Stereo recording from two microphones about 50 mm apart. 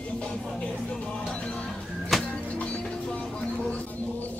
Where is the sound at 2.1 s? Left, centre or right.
Centre.